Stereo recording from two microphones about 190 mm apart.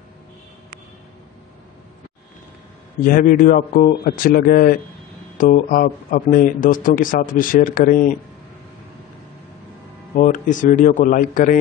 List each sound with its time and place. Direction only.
3.0 s speech: 50° left (ahead or behind)
10.1 s speech: 45° left (ahead or behind)